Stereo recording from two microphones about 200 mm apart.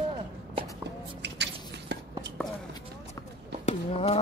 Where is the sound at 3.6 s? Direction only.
30° left (ahead or behind).